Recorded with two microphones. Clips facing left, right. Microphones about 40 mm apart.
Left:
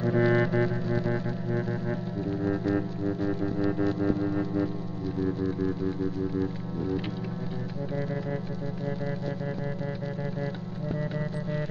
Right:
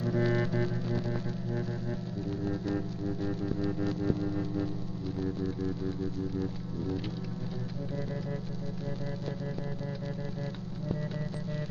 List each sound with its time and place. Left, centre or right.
0.0 s music: left
2.7 s music: left